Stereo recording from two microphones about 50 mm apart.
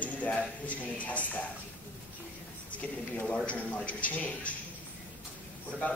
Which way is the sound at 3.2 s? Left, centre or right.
Left.